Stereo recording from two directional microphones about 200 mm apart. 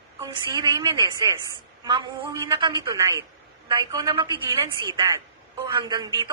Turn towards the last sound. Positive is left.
turn(degrees=-20)  # may be behind; listen again after turning